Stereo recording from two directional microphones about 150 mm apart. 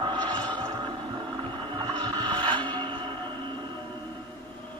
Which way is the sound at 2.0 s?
30° right (ahead or behind).